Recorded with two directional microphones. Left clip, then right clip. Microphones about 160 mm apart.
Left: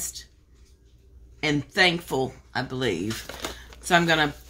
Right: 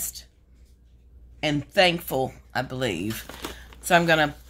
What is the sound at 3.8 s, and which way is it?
Speech, 40° right (ahead or behind).